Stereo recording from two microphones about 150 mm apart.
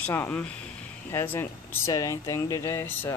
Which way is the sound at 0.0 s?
15° left (ahead or behind).